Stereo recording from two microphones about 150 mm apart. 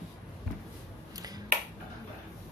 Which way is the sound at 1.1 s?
25° right (ahead or behind).